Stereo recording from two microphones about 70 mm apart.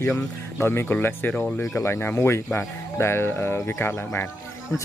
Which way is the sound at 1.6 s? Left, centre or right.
Left.